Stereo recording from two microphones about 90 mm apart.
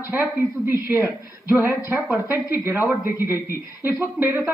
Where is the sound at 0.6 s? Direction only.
25° right (ahead or behind).